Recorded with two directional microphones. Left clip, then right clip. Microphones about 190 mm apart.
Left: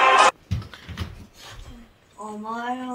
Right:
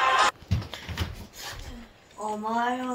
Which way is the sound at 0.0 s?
65° left (ahead or behind).